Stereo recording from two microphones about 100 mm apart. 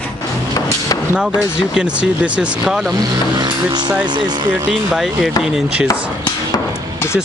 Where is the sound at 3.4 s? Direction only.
45° right (ahead or behind).